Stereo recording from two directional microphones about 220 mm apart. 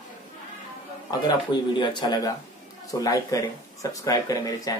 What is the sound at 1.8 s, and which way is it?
Speech, 20° left (ahead or behind).